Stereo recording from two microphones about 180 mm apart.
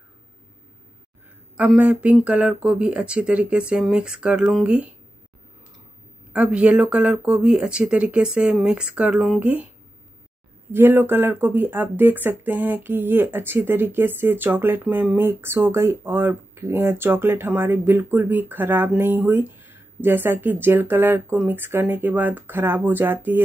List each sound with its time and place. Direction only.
1.6 s speech: 5° right (ahead or behind)
6.3 s speech: 5° right (ahead or behind)
10.7 s speech: 10° right (ahead or behind)